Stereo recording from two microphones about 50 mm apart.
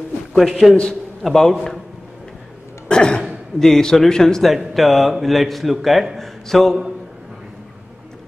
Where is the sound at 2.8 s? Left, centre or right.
Centre.